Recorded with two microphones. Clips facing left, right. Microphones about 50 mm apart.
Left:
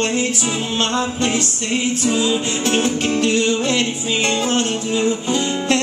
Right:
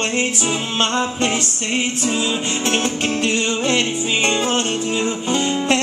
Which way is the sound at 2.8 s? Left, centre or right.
Right.